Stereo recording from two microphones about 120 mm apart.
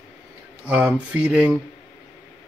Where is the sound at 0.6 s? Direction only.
10° right (ahead or behind).